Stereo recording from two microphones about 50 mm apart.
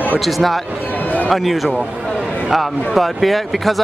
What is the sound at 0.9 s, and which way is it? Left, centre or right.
Basketball bounce, left.